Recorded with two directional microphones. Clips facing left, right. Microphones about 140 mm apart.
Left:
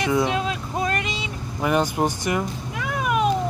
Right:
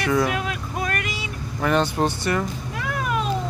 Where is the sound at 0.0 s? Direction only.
20° left (ahead or behind).